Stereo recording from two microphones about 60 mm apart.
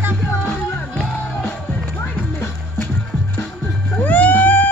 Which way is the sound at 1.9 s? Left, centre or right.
Left.